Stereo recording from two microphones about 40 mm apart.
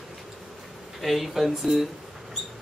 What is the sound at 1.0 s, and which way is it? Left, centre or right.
Speech, centre.